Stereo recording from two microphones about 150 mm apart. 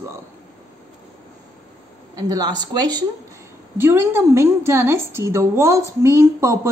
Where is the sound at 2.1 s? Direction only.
25° right (ahead or behind).